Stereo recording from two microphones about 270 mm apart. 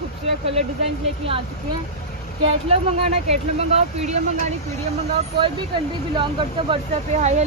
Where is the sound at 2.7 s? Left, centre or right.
Right.